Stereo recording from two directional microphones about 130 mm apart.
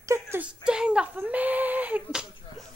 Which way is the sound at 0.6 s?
5° right (ahead or behind).